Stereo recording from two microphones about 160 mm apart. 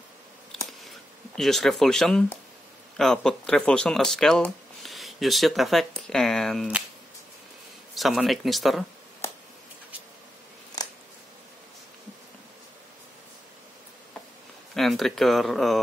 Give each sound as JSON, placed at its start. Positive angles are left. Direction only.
{"t": 0.5, "sound": "a sound", "side_deg": 0}
{"t": 3.0, "sound": "speech", "side_deg": 5}
{"t": 7.9, "sound": "speech", "side_deg": 0}
{"t": 10.8, "sound": "scissors", "side_deg": 25}
{"t": 14.8, "sound": "speech", "side_deg": 0}